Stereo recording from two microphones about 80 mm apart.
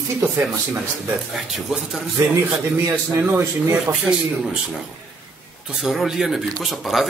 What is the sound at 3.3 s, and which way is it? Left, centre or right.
Speech, centre.